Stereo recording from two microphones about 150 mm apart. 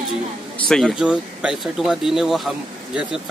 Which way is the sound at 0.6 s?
Centre (ahead or behind).